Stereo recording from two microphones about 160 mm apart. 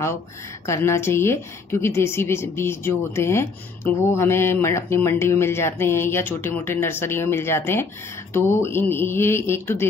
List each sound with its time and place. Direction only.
0.7 s a woman's voice: 15° left (ahead or behind)